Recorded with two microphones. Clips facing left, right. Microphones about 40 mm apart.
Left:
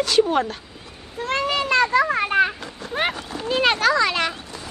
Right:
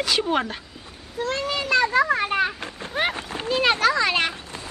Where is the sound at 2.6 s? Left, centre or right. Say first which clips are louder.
Even; right.